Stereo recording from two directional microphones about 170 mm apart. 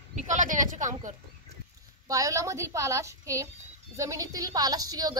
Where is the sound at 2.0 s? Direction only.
20° right (ahead or behind).